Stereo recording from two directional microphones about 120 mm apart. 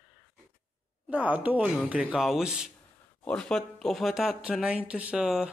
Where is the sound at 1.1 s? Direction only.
10° right (ahead or behind).